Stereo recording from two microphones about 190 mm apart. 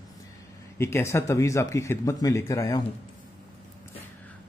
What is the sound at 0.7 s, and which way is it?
A man's voice, 15° left (ahead or behind).